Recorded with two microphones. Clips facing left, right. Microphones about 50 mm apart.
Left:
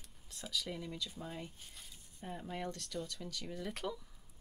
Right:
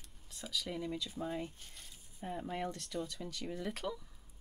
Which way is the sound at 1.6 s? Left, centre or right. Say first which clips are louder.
Even; centre.